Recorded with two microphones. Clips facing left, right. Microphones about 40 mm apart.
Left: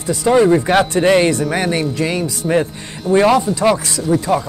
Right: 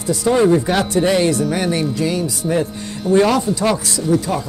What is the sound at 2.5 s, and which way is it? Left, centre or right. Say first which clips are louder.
Speech: left 4 dB; left.